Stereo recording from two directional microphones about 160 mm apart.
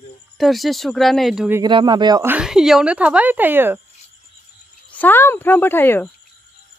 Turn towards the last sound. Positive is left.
turn(degrees=15)  # may be behind; listen again after turning